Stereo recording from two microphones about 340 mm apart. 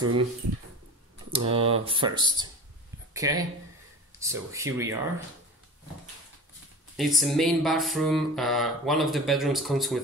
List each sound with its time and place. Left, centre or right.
0.0 s speech: right
1.3 s speech: centre
4.1 s a sound: centre
4.5 s speech: centre
7.0 s speech: centre